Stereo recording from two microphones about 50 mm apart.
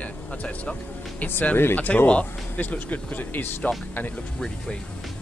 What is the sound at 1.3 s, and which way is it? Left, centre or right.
Speech, left.